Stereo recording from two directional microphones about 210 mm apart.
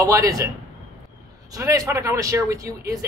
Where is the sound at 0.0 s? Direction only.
15° right (ahead or behind).